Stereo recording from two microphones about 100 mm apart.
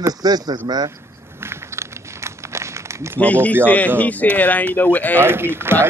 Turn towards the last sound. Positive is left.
turn(degrees=-25)  # may be behind; listen again after turning